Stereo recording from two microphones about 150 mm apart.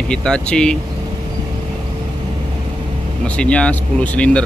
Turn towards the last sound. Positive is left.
turn(degrees=10)  # may be behind; listen again after turning